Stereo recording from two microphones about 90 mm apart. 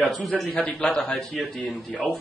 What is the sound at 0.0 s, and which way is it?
Speech, centre (ahead or behind).